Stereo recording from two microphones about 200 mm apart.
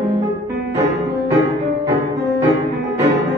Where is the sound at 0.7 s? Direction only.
15° right (ahead or behind).